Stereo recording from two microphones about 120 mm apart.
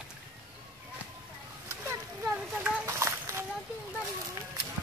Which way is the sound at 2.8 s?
25° right (ahead or behind).